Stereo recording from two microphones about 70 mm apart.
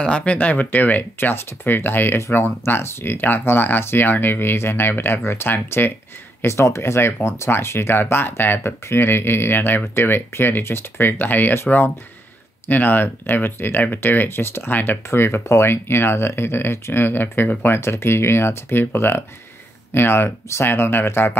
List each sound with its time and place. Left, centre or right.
0.0 s speech: centre
6.4 s speech: left
12.6 s speech: left